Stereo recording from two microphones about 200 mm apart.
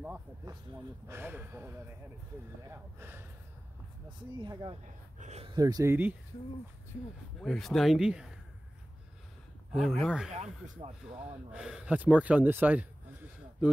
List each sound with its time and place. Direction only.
0.0 s speech: 10° right (ahead or behind)
2.7 s speech: 10° right (ahead or behind)
4.4 s speech: 20° right (ahead or behind)
5.2 s speech: 35° right (ahead or behind)
5.5 s speech: 20° right (ahead or behind)
7.3 s speech: centre (ahead or behind)
9.7 s speech: centre (ahead or behind)
10.3 s speech: 35° right (ahead or behind)
11.2 s speech: 5° right (ahead or behind)